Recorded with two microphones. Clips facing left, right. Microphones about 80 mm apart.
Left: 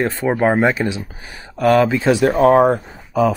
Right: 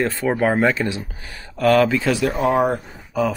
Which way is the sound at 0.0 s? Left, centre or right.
Left.